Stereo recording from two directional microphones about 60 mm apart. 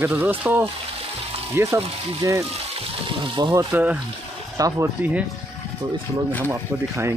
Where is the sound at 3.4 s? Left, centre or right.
Right.